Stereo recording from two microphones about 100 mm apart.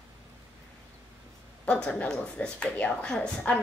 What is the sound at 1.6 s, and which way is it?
Speech, 10° left (ahead or behind).